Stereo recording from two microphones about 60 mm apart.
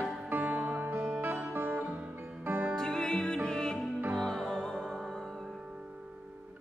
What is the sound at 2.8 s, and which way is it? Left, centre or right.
Music, centre.